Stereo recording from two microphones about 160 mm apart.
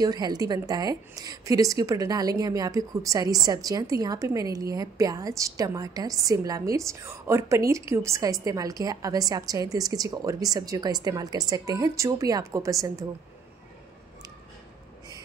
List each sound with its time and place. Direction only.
0.0 s a woman's voice: 25° right (ahead or behind)